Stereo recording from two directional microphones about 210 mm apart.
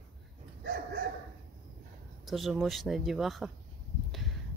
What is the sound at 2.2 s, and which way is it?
Speech, centre (ahead or behind).